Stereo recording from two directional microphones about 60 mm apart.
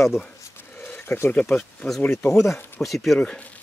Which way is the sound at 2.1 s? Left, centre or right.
Left.